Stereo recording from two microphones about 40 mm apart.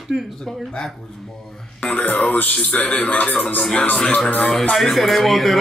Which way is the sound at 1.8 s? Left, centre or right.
Left.